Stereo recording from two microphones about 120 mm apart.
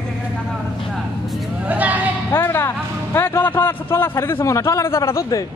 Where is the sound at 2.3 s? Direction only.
20° left (ahead or behind).